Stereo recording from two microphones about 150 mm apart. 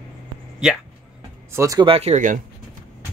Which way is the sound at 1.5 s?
20° right (ahead or behind).